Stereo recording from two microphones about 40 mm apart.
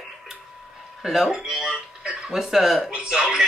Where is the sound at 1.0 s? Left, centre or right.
Centre.